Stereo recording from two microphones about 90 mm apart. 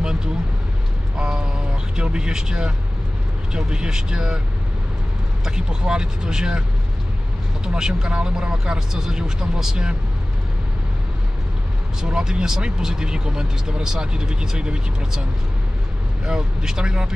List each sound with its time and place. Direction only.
0.0 s vehicle: 5° right (ahead or behind)
1.1 s a sound: 5° right (ahead or behind)
2.0 s speech: 10° right (ahead or behind)
5.4 s speech: 10° right (ahead or behind)
7.6 s speech: 10° right (ahead or behind)
12.0 s speech: 10° right (ahead or behind)
16.3 s speech: 5° right (ahead or behind)